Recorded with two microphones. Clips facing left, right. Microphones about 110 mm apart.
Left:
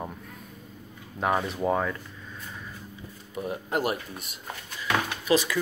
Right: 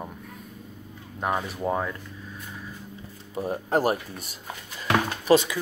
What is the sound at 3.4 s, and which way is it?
Speech, 35° right (ahead or behind).